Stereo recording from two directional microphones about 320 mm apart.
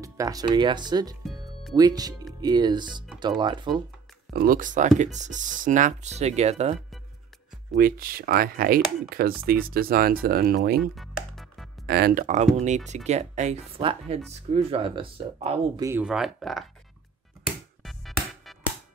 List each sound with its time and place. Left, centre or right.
0.0 s speech: centre
1.2 s music: centre
1.8 s speech: centre
4.3 s speech: right
10.8 s music: centre
11.8 s speech: right; by 16.6 s centre
17.8 s music: centre